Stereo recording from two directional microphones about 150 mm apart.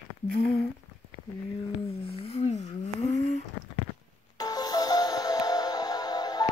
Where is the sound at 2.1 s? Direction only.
40° left (ahead or behind).